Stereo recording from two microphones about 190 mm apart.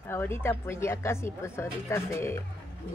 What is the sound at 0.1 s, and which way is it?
Speech, 15° left (ahead or behind).